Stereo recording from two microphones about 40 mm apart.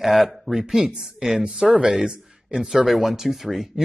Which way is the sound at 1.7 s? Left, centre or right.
Right.